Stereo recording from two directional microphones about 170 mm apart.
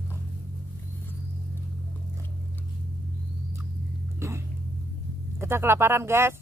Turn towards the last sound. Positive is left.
turn(degrees=-15)  # may be behind; listen again after turning